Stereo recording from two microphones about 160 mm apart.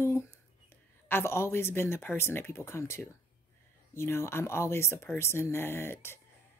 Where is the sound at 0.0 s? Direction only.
15° left (ahead or behind).